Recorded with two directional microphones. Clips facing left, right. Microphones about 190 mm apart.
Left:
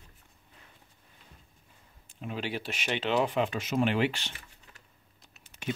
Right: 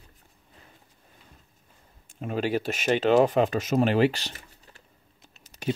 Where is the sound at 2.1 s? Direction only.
45° right (ahead or behind).